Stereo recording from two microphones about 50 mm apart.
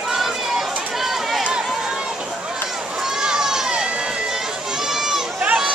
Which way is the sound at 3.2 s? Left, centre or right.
Centre.